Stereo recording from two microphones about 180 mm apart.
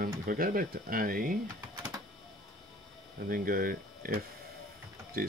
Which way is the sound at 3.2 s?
50° right (ahead or behind).